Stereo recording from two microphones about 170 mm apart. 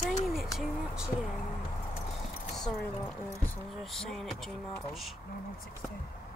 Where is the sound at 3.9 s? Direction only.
Centre (ahead or behind).